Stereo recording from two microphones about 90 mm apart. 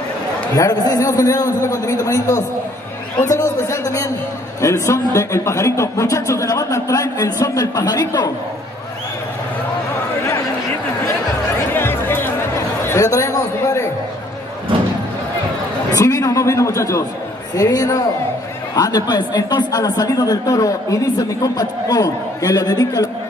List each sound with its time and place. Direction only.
0.6 s a man's voice: 40° left (ahead or behind)
11.7 s a sound: 25° left (ahead or behind)
15.9 s a man's voice: 40° left (ahead or behind)